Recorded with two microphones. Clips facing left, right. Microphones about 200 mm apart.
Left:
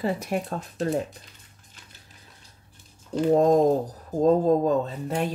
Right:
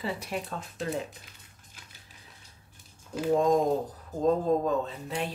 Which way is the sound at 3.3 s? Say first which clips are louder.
Left 5 dB; 40° left (ahead or behind).